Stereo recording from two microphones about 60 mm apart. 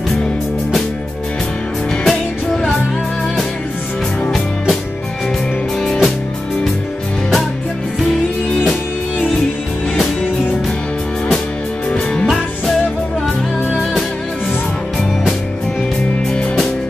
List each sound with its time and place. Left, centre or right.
1.9 s music: centre
5.8 s music: centre
11.9 s music: centre
16.3 s music: centre